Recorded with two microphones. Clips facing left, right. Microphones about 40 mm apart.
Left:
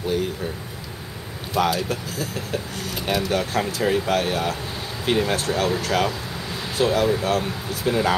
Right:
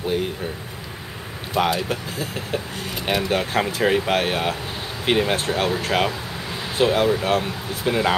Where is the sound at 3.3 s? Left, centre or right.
Right.